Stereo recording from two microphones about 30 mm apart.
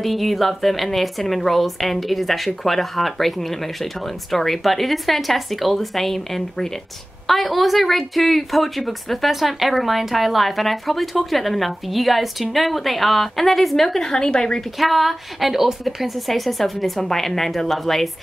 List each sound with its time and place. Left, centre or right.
0.0 s a woman's voice: centre
14.1 s speech: left
14.8 s a woman's voice: centre